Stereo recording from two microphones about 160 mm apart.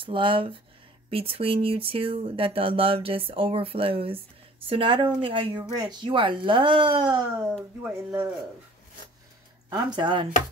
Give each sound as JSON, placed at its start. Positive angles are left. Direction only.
{"t": 0.0, "sound": "speech", "side_deg": -35}
{"t": 7.8, "sound": "speech", "side_deg": -15}
{"t": 9.7, "sound": "speech", "side_deg": -25}